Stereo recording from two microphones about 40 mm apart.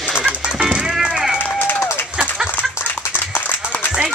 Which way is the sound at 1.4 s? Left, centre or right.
Left.